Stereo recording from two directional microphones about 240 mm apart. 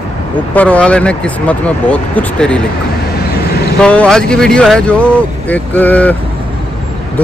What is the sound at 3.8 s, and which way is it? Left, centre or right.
Speech, centre.